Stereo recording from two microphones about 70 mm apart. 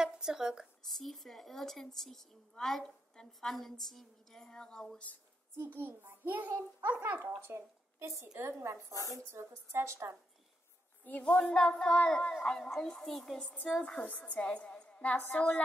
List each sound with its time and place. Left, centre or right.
0.0 s speech: centre
0.8 s a woman's voice: centre
5.7 s a child's voice: right
11.1 s a woman's voice: centre
13.8 s a woman's voice: centre